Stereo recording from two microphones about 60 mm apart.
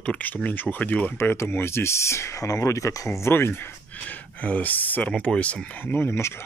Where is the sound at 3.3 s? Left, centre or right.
Left.